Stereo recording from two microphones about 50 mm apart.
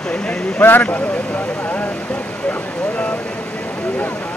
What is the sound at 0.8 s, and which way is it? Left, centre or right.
Vehicle, left.